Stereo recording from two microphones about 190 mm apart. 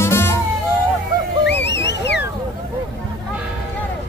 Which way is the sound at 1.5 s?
65° left (ahead or behind).